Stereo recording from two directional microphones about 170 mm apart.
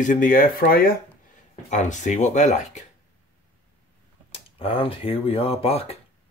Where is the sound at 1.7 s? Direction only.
45° left (ahead or behind).